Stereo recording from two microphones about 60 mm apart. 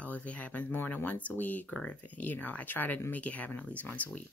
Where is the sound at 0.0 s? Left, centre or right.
Left.